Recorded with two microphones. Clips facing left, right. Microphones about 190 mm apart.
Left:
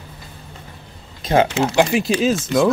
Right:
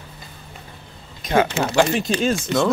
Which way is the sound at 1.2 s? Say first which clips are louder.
Left 2 dB; 30° left (ahead or behind).